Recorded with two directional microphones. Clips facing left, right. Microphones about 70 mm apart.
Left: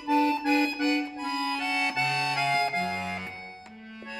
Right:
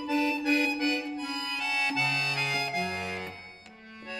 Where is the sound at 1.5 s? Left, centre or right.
Left.